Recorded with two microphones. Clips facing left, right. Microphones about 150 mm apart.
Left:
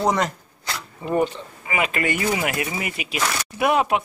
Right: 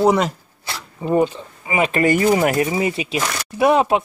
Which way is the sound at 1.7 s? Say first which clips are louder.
Right 7 dB; 30° right (ahead or behind).